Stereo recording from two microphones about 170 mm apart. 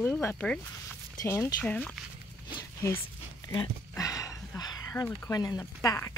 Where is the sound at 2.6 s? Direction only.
15° left (ahead or behind).